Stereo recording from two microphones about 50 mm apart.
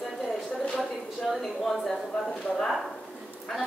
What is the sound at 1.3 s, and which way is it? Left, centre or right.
Speech, centre.